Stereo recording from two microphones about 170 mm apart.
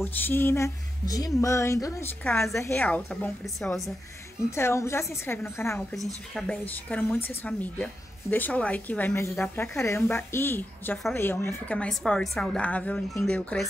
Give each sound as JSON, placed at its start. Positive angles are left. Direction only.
{"t": 0.0, "sound": "a woman's voice", "side_deg": 15}
{"t": 4.5, "sound": "a woman's voice", "side_deg": 15}
{"t": 6.3, "sound": "a woman's voice", "side_deg": 5}